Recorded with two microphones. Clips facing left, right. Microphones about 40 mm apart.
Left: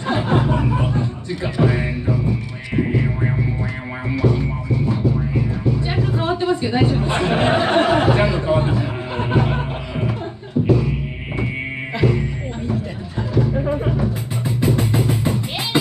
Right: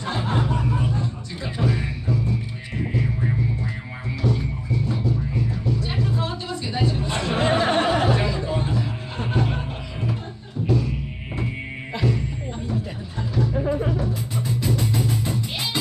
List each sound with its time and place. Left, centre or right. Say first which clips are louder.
0.1 s music: left 6 dB; left
4.1 s music: left 6 dB; left